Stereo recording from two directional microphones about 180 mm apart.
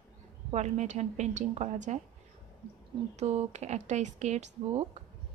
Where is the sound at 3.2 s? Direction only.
40° right (ahead or behind).